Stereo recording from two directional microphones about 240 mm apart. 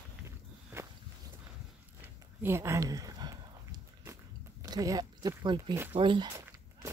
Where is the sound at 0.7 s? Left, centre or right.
Centre.